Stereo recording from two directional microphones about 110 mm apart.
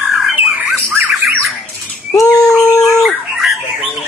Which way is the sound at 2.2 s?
30° left (ahead or behind).